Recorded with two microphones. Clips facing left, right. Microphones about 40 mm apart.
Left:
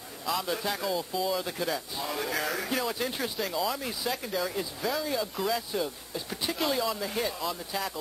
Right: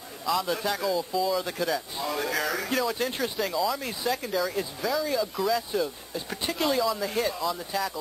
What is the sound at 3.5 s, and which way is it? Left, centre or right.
Speech, centre.